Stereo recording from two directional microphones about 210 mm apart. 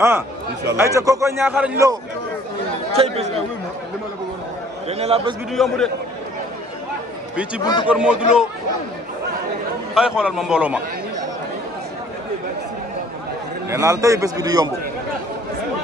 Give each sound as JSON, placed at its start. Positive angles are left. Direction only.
{"t": 0.7, "sound": "a man's voice", "side_deg": -15}
{"t": 2.9, "sound": "speech", "side_deg": -30}
{"t": 4.8, "sound": "a man's voice", "side_deg": -30}
{"t": 5.5, "sound": "a man's voice", "side_deg": 0}
{"t": 7.6, "sound": "speech", "side_deg": 20}
{"t": 7.9, "sound": "a man's voice", "side_deg": -5}
{"t": 9.9, "sound": "a man's voice", "side_deg": -5}
{"t": 13.7, "sound": "a man's voice", "side_deg": -15}